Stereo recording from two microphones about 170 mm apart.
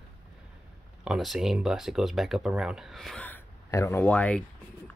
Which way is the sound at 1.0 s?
Centre (ahead or behind).